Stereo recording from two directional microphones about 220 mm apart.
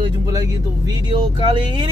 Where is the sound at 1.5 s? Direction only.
20° right (ahead or behind).